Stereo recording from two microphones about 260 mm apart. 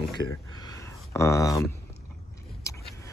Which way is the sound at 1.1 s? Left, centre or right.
Centre.